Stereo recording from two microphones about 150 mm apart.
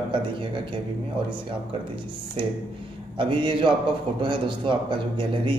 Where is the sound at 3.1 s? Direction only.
35° right (ahead or behind).